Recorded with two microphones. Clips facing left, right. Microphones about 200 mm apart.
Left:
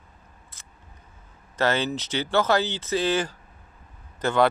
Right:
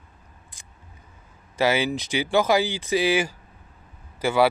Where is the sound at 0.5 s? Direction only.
15° right (ahead or behind).